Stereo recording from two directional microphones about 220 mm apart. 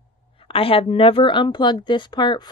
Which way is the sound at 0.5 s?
25° left (ahead or behind).